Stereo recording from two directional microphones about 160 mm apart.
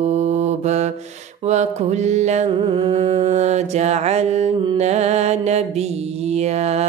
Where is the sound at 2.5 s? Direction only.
35° right (ahead or behind).